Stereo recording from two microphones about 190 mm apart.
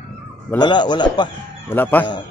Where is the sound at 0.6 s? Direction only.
25° left (ahead or behind).